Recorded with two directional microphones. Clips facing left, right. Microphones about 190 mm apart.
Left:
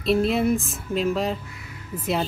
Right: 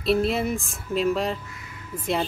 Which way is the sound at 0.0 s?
Centre (ahead or behind).